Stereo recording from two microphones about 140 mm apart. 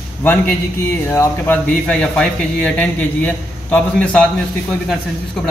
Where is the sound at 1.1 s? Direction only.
10° left (ahead or behind).